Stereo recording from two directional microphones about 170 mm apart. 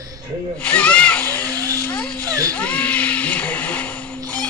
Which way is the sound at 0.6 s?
10° left (ahead or behind).